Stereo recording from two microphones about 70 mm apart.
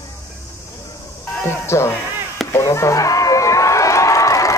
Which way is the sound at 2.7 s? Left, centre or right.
Left.